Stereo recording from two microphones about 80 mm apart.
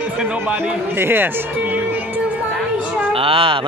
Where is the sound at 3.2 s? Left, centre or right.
Right.